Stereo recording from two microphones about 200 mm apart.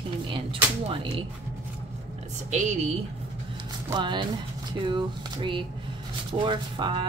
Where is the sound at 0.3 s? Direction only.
25° right (ahead or behind).